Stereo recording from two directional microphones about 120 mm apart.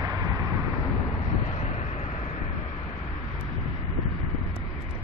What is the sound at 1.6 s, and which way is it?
Vehicle, 70° left (ahead or behind).